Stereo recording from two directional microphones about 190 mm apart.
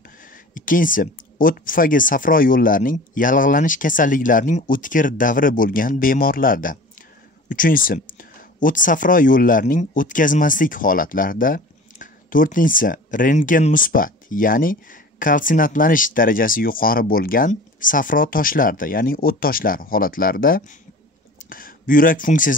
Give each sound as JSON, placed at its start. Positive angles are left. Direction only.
{"t": 0.2, "sound": "speech", "side_deg": 45}